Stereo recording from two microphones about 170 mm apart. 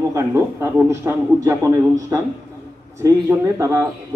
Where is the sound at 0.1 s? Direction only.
15° right (ahead or behind).